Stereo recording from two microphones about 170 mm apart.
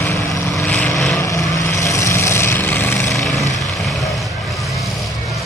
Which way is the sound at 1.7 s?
15° left (ahead or behind).